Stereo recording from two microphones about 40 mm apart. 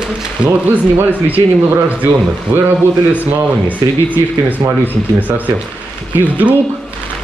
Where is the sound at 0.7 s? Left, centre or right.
Right.